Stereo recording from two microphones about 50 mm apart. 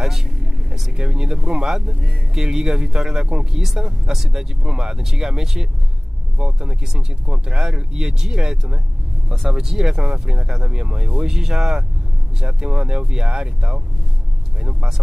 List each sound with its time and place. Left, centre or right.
0.0 s vehicle: centre
1.0 s speech: centre